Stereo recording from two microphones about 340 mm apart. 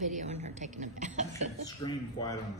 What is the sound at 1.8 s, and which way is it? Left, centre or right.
Speech, centre.